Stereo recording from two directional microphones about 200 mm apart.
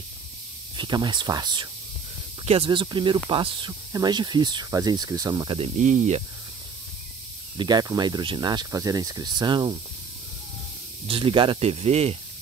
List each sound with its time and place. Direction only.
0.7 s speech: 20° right (ahead or behind)
5.8 s speech: 35° right (ahead or behind)
7.5 s speech: 20° right (ahead or behind)
11.1 s speech: 25° right (ahead or behind)